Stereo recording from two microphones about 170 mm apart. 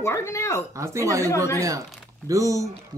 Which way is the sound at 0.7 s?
20° right (ahead or behind).